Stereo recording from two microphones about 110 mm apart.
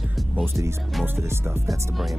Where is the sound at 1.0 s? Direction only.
25° right (ahead or behind).